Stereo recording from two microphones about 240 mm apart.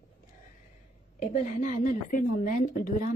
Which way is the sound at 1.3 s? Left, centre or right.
Left.